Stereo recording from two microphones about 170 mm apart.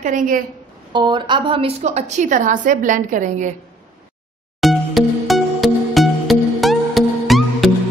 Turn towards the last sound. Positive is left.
turn(degrees=0)  # may be behind; listen again after turning